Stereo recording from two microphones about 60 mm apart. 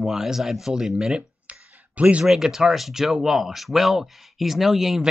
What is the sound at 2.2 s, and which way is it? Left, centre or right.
Speech, centre.